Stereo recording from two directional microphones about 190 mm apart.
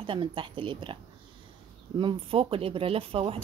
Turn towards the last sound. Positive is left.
turn(degrees=-30)  # may be behind; listen again after turning